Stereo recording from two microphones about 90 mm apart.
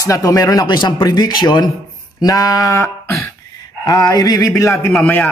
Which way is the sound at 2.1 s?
40° left (ahead or behind).